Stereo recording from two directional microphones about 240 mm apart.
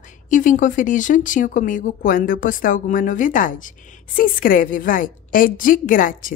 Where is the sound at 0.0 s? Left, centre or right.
Left.